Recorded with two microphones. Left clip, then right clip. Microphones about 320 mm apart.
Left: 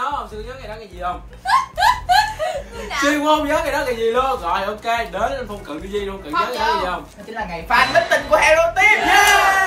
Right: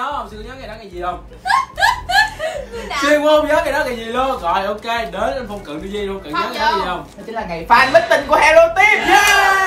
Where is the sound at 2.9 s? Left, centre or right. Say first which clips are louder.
Right 4 dB; centre.